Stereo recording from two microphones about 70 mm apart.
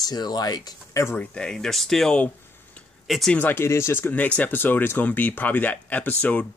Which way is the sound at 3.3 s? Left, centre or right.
Left.